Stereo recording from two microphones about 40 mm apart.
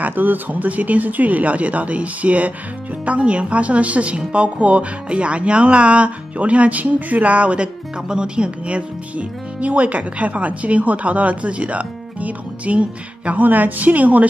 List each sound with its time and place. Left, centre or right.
0.0 s a woman's voice: right
13.4 s a woman's voice: right